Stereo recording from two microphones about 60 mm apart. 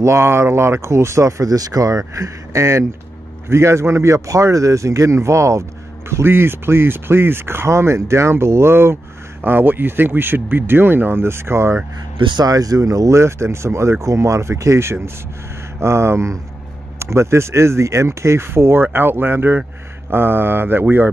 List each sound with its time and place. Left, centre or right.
0.0 s a man's voice: right
6.2 s speech: right
12.4 s a man's voice: right